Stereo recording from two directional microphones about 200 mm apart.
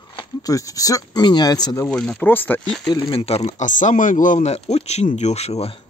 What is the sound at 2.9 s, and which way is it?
Speech, 25° left (ahead or behind).